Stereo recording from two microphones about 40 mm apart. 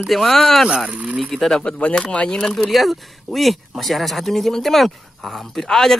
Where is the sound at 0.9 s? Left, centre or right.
Right.